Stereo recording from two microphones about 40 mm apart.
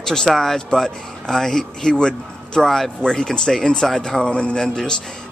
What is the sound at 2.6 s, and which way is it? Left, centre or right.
Speech, centre.